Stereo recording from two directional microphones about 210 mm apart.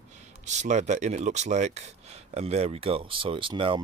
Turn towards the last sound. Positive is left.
turn(degrees=-25)  # may be behind; listen again after turning